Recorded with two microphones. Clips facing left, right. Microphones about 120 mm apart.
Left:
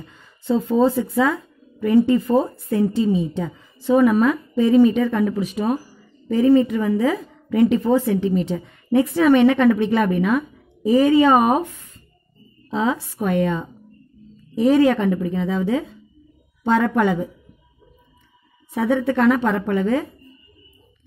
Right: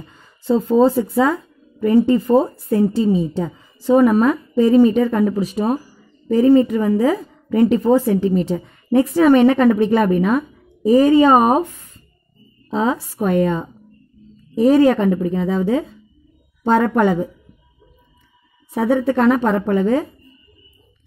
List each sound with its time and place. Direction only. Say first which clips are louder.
0.1 s a woman's voice: right 3 dB; 40° right (ahead or behind)
12.6 s a woman's voice: right 2 dB; 35° right (ahead or behind)
18.7 s a woman's voice: right 3 dB; 40° right (ahead or behind)